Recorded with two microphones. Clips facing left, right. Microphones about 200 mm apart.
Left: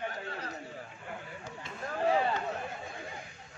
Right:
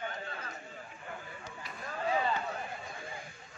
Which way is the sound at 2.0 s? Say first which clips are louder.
Left 4 dB; 65° left (ahead or behind).